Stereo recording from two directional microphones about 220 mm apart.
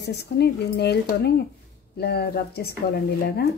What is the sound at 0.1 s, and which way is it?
A woman's voice, 50° left (ahead or behind).